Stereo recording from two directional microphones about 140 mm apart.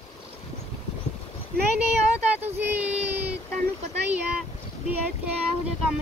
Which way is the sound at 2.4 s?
10° right (ahead or behind).